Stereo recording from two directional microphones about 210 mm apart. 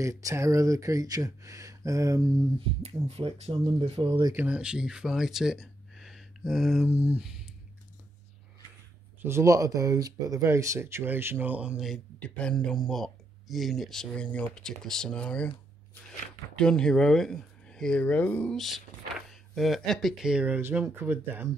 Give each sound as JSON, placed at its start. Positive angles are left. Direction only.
{"t": 0.0, "sound": "speech", "side_deg": -15}
{"t": 3.1, "sound": "speech", "side_deg": -30}
{"t": 4.3, "sound": "speech", "side_deg": -5}
{"t": 9.2, "sound": "speech", "side_deg": -15}
{"t": 16.6, "sound": "speech", "side_deg": 5}